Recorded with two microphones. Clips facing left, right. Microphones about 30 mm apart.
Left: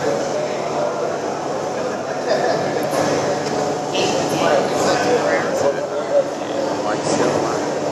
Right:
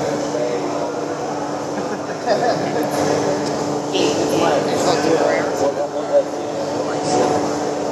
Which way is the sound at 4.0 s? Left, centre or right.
Centre.